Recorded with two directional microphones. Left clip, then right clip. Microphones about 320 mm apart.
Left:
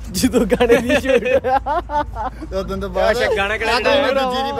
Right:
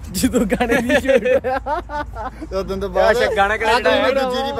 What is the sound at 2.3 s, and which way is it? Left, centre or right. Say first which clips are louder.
Speech: right 1 dB; right.